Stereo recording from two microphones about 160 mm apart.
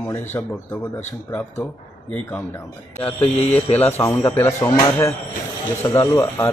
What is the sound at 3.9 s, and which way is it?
Speech, 15° left (ahead or behind).